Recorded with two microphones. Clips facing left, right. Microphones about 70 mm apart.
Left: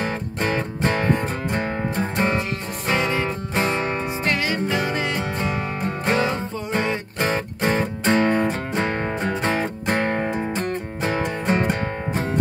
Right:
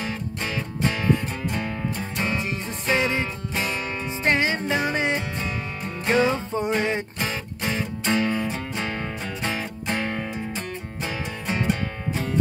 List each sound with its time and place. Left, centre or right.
0.0 s music: left
2.9 s music: left
4.2 s music: right
5.8 s music: left
6.1 s music: right
7.2 s music: left